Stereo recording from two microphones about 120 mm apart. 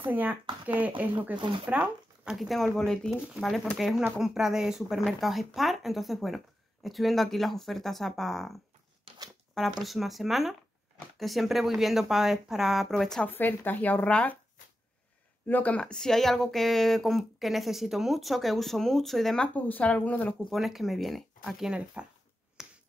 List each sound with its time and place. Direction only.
0.0 s speech: 15° right (ahead or behind)
1.3 s speech: 40° right (ahead or behind)
1.7 s speech: 10° right (ahead or behind)
2.3 s speech: centre (ahead or behind)
9.1 s shuffling cards: 50° right (ahead or behind)
9.6 s speech: centre (ahead or behind)
13.3 s speech: 15° left (ahead or behind)
15.4 s speech: 15° left (ahead or behind)
20.4 s speech: centre (ahead or behind)
22.6 s finger snapping: 5° right (ahead or behind)